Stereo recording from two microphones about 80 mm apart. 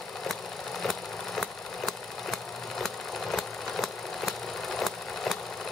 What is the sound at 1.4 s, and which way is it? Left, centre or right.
Vehicle, centre.